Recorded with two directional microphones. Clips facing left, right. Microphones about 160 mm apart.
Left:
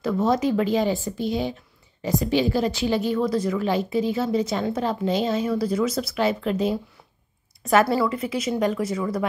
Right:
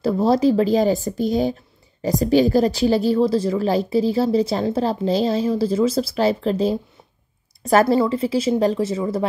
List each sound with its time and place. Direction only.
0.0 s speech: 35° right (ahead or behind)